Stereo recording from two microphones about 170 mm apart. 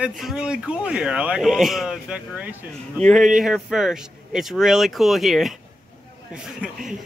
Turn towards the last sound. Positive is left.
turn(degrees=-5)  # may be behind; listen again after turning